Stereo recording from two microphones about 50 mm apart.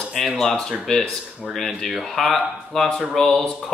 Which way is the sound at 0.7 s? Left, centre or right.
Centre.